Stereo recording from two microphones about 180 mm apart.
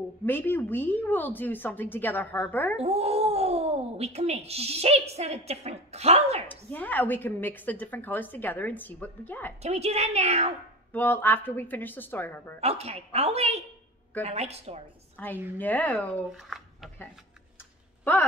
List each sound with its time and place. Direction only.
0.2 s a woman's voice: 10° left (ahead or behind)
2.8 s speech: 35° right (ahead or behind)
6.4 s a woman's voice: 10° left (ahead or behind)
9.6 s speech: 35° right (ahead or behind)
10.9 s a woman's voice: 10° left (ahead or behind)
12.5 s speech: 35° right (ahead or behind)
15.6 s a woman's voice: 10° left (ahead or behind)
16.3 s shuffling cards: centre (ahead or behind)